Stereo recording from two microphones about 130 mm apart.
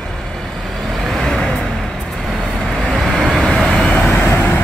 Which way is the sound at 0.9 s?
Centre (ahead or behind).